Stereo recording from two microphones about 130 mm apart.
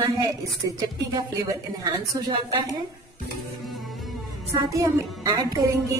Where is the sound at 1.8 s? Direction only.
30° right (ahead or behind).